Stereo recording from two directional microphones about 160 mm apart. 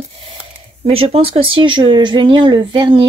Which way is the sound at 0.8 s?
35° right (ahead or behind).